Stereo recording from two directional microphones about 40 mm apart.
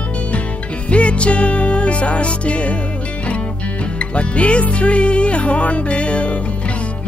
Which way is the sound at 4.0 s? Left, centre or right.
Left.